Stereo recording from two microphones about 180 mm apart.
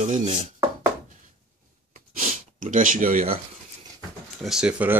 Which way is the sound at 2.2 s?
45° right (ahead or behind).